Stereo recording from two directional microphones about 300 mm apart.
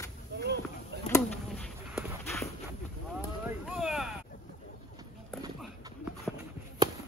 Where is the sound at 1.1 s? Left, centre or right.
Centre.